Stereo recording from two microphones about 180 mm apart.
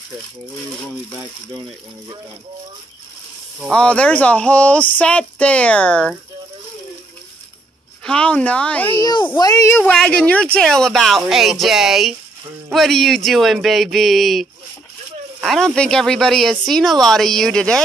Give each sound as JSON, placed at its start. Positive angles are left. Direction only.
{"t": 3.7, "sound": "speech", "side_deg": 5}
{"t": 8.0, "sound": "speech", "side_deg": 5}
{"t": 9.0, "sound": "speech", "side_deg": 25}